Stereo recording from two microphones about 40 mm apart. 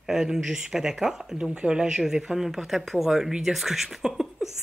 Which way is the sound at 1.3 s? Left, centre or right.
Right.